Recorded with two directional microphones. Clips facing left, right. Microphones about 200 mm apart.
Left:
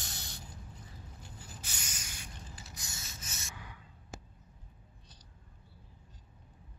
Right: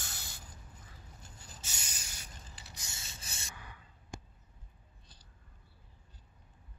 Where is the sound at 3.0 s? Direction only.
35° right (ahead or behind).